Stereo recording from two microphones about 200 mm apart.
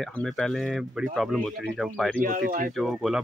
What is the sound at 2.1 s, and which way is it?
Speech, 45° right (ahead or behind).